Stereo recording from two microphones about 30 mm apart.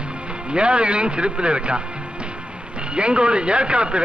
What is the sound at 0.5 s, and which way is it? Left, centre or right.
Speech, right.